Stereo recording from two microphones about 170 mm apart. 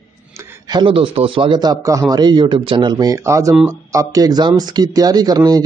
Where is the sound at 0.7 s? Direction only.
30° right (ahead or behind).